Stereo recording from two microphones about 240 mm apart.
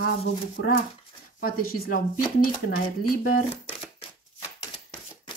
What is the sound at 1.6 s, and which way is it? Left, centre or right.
Speech, left.